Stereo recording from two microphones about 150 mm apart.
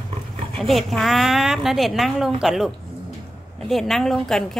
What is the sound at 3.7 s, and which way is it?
Speech, centre (ahead or behind).